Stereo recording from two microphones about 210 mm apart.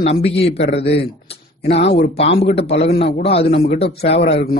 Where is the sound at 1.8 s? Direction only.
55° left (ahead or behind).